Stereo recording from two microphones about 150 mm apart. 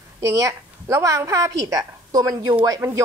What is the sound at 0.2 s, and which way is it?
Speech, 25° right (ahead or behind).